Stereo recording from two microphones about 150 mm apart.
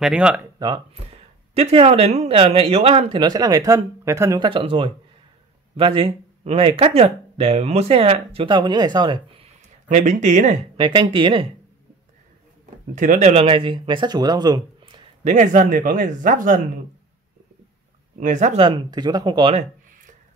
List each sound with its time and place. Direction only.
0.0 s speech: 5° right (ahead or behind)
0.6 s speech: 30° right (ahead or behind)
1.5 s speech: 40° right (ahead or behind); by 4.4 s 20° right (ahead or behind)
4.4 s speech: 35° right (ahead or behind)
9.8 s speech: 55° right (ahead or behind)
10.8 s speech: 35° right (ahead or behind)
12.9 s speech: 60° right (ahead or behind)
13.3 s speech: 40° right (ahead or behind)
15.2 s speech: 55° right (ahead or behind)
18.2 s speech: 50° right (ahead or behind)
18.7 s speech: 30° right (ahead or behind)